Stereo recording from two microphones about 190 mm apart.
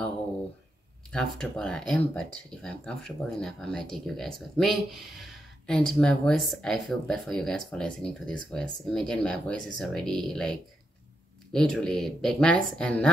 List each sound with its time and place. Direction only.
1.1 s speech: 5° left (ahead or behind)
11.5 s speech: 5° left (ahead or behind)